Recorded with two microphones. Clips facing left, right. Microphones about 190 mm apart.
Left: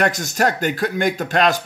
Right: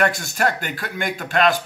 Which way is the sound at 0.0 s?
45° left (ahead or behind).